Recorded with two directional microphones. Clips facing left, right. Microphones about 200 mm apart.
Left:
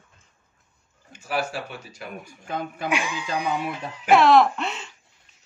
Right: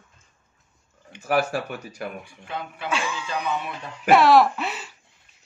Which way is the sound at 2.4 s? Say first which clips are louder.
Left 4 dB; 40° left (ahead or behind).